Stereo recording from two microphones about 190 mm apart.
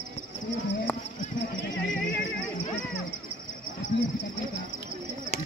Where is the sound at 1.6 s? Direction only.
70° left (ahead or behind).